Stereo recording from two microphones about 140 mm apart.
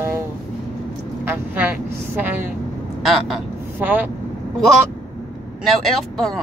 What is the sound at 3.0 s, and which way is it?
Speech, centre (ahead or behind).